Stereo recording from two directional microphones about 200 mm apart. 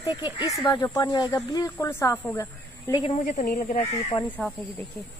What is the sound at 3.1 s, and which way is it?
Speech, 35° left (ahead or behind).